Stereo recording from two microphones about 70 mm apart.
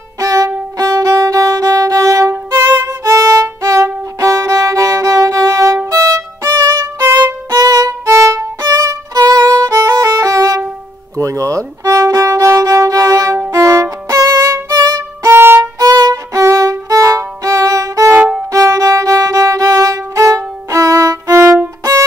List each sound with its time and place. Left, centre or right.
0.2 s violin: right
2.3 s violin: right
7.4 s violin: right
8.1 s violin: right
14.7 s violin: right
15.2 s violin: right
15.8 s violin: right